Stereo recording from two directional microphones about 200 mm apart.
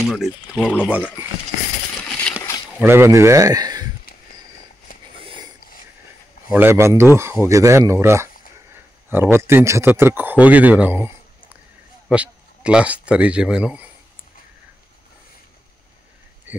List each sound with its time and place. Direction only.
0.0 s speech: centre (ahead or behind)
2.8 s speech: 10° right (ahead or behind)
5.2 s a sound: 25° right (ahead or behind)
6.5 s a man's voice: 10° right (ahead or behind)